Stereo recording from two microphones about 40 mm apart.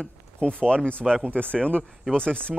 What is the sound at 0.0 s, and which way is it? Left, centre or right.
A man's voice, left.